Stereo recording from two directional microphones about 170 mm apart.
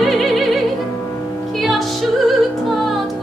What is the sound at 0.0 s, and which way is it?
Opera, centre (ahead or behind).